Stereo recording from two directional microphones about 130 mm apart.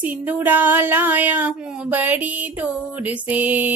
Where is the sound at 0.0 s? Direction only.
10° right (ahead or behind).